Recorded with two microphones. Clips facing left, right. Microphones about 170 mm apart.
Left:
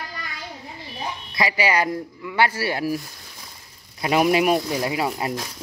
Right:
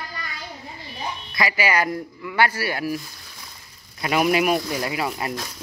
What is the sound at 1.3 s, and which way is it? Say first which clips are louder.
Speech: left 1 dB; 30° left (ahead or behind).